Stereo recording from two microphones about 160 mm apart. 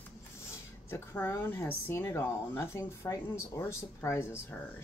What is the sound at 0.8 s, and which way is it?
Speech, 15° left (ahead or behind).